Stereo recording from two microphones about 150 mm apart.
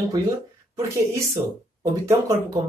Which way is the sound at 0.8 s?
20° right (ahead or behind).